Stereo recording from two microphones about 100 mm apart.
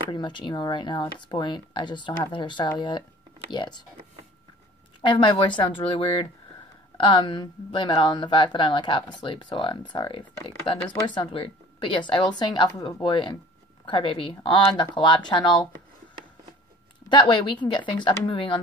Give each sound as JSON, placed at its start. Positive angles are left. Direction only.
{"t": 0.1, "sound": "speech", "side_deg": 50}
{"t": 5.0, "sound": "speech", "side_deg": 55}
{"t": 17.1, "sound": "speech", "side_deg": 55}